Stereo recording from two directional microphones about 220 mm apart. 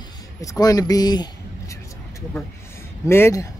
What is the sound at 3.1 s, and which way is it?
Speech, 10° left (ahead or behind).